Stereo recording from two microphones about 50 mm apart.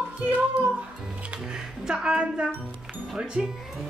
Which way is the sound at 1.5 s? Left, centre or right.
Centre.